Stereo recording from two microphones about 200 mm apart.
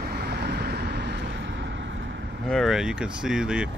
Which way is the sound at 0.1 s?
55° right (ahead or behind).